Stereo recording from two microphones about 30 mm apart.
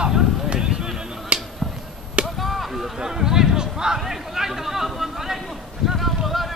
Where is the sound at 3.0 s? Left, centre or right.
Centre.